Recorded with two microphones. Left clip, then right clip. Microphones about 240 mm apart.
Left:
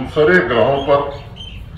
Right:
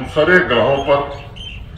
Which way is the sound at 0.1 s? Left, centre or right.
Right.